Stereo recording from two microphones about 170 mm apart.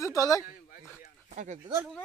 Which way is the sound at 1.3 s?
45° right (ahead or behind).